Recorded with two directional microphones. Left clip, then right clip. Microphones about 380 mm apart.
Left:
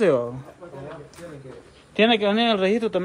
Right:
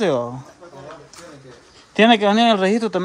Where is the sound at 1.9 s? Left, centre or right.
Centre.